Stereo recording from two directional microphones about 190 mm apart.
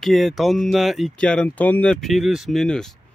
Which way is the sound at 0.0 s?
Centre (ahead or behind).